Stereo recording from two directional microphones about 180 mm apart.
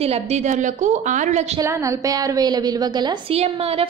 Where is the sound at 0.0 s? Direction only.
35° right (ahead or behind).